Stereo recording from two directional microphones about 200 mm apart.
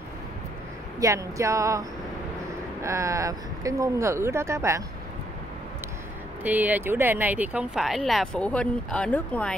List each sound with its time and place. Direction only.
0.9 s speech: 15° right (ahead or behind)
6.4 s speech: 10° right (ahead or behind)